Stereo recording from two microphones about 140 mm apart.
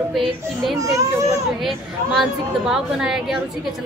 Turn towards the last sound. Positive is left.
turn(degrees=-5)  # may be behind; listen again after turning